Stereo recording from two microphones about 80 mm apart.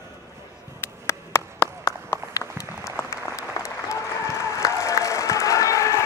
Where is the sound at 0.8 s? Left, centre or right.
Left.